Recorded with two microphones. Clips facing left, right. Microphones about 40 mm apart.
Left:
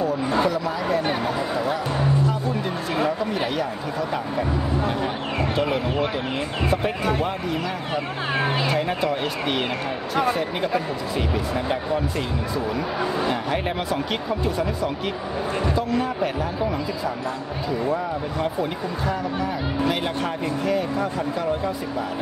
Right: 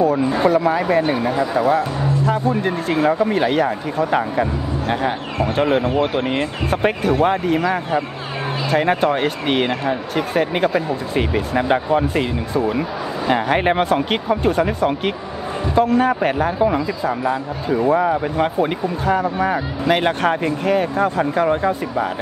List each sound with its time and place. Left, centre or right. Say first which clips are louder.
0.4 s speech: right 7 dB; right
16.6 s speech: right 6 dB; right
17.6 s speech: right 9 dB; right